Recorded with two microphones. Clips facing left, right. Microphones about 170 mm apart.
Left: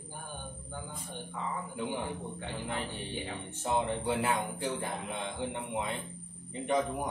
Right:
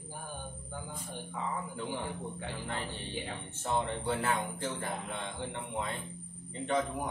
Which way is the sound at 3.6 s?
15° left (ahead or behind).